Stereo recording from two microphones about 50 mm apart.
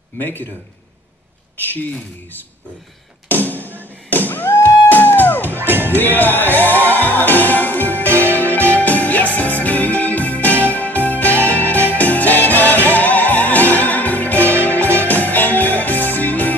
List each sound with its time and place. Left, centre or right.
0.2 s a man's voice: left
3.3 s music: left
5.6 s music: right
5.9 s music: left